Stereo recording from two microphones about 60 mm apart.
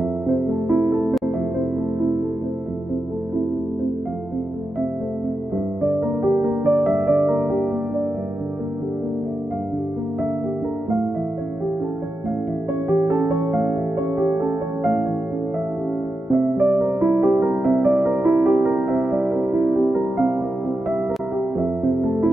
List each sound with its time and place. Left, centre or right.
0.7 s music: right
5.9 s music: right
12.8 s music: right
13.5 s music: centre
16.3 s music: right